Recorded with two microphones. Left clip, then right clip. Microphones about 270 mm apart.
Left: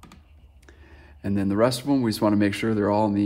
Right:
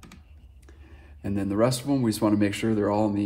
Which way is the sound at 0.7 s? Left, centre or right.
Left.